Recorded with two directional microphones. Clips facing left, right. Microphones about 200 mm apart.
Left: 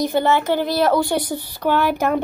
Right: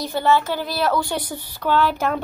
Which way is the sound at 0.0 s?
20° left (ahead or behind).